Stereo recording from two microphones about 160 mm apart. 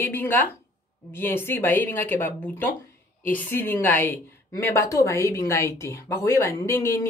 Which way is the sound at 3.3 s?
10° left (ahead or behind).